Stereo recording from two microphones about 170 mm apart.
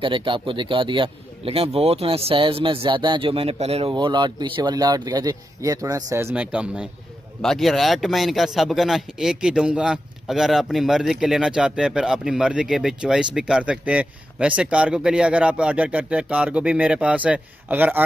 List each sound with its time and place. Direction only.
0.0 s a man's voice: 30° right (ahead or behind); by 18.0 s 10° right (ahead or behind)